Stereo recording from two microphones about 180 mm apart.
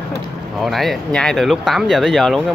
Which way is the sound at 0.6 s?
Centre (ahead or behind).